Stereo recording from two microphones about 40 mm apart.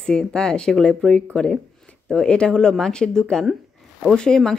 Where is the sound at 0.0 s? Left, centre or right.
Centre.